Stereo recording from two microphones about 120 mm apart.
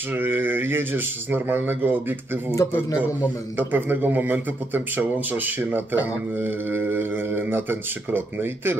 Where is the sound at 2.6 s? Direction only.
25° left (ahead or behind).